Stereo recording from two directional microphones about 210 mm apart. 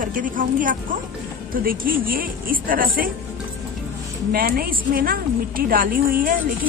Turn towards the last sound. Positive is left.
turn(degrees=-40)  # may be behind; listen again after turning